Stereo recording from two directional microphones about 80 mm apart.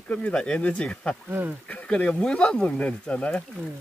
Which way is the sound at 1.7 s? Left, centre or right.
Centre.